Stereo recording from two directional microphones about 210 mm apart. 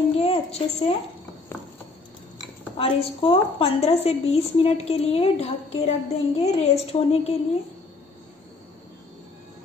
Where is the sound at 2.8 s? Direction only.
25° left (ahead or behind).